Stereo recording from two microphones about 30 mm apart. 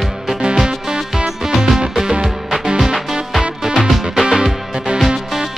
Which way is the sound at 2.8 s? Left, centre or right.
Centre.